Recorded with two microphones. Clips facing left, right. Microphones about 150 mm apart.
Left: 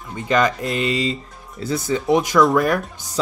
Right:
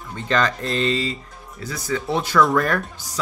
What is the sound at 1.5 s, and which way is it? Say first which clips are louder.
Speech: left 4 dB; 25° left (ahead or behind).